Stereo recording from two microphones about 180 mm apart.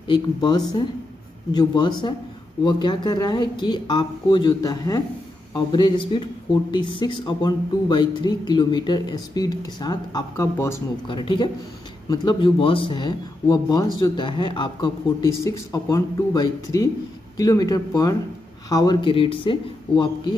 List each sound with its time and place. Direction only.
0.1 s speech: 25° left (ahead or behind)
11.1 s speech: 25° left (ahead or behind)